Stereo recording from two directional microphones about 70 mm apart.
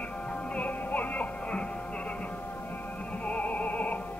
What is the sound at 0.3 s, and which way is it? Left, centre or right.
Music, centre.